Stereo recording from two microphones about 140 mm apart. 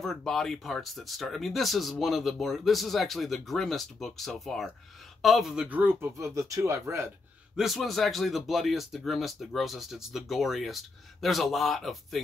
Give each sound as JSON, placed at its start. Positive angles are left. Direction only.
{"t": 0.0, "sound": "speech", "side_deg": 5}
{"t": 7.5, "sound": "speech", "side_deg": 0}